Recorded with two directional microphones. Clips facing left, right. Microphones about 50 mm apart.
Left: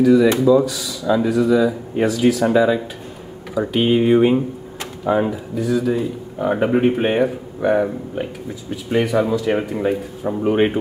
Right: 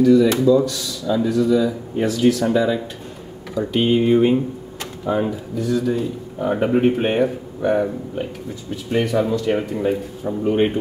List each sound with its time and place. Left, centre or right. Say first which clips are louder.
0.0 s speech: left 1 dB; centre
1.0 s speech: left 2 dB; left
5.6 s speech: left 1 dB; centre
6.4 s speech: left 1 dB; left
8.9 s speech: left 2 dB; centre
9.6 s speech: left 1 dB; left